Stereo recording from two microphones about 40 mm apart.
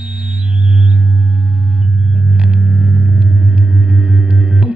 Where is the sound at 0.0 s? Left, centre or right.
Right.